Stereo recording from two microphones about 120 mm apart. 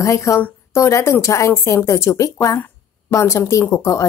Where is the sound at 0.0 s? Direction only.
25° left (ahead or behind).